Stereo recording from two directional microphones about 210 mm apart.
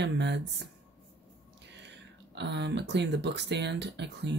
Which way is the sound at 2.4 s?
55° right (ahead or behind).